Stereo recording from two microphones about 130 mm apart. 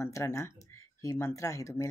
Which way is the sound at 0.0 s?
20° left (ahead or behind).